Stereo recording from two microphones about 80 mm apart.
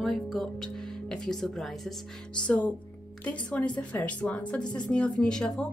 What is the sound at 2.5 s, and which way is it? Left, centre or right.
Speech, centre.